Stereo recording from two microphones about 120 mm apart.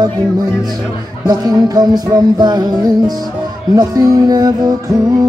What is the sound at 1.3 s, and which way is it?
Music, 35° right (ahead or behind).